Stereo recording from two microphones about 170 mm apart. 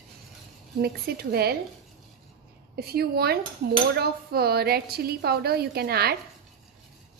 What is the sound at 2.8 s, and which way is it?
A woman's voice, 65° right (ahead or behind).